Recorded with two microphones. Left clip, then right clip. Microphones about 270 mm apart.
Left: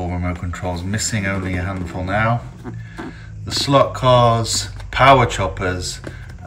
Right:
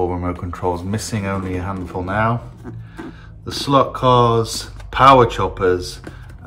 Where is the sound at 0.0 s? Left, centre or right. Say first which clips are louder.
Right 5 dB; centre.